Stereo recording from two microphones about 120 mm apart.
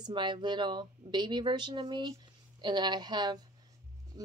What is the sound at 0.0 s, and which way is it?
Speech, 40° right (ahead or behind).